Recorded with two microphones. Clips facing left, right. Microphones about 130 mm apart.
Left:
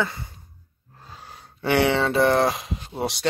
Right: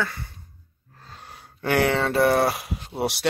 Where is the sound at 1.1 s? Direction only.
Centre (ahead or behind).